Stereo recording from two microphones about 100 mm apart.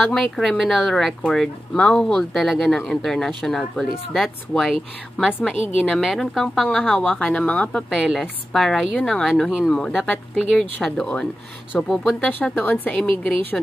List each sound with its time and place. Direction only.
0.0 s a woman's voice: 5° left (ahead or behind)
7.9 s speech: centre (ahead or behind)
12.2 s a woman's voice: 15° left (ahead or behind)